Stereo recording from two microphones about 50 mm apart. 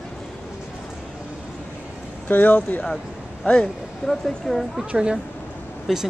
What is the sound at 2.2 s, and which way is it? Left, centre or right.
Speech, left.